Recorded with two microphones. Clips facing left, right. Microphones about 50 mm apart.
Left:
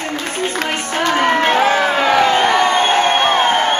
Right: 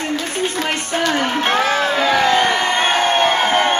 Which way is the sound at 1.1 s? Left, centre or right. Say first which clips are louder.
Left 4 dB; left.